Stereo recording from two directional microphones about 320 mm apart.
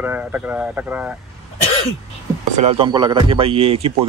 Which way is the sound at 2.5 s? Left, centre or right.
Centre.